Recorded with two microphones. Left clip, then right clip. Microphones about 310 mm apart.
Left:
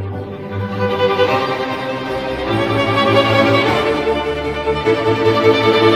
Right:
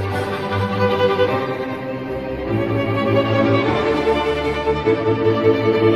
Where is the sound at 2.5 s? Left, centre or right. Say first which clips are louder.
Left 5 dB; left.